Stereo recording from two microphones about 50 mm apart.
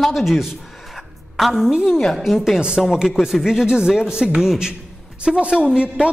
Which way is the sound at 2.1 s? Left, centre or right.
Centre.